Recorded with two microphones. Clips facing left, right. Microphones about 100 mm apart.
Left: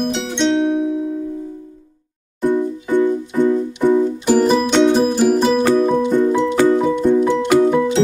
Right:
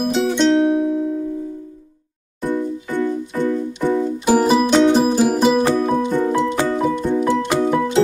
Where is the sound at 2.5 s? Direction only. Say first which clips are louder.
Left 4 dB; 15° left (ahead or behind).